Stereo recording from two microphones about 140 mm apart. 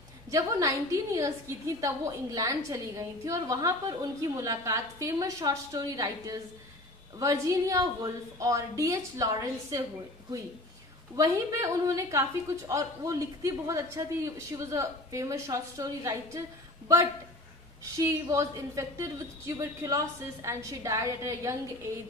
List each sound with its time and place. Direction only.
0.3 s a woman's voice: 25° right (ahead or behind)
11.1 s a woman's voice: 25° right (ahead or behind)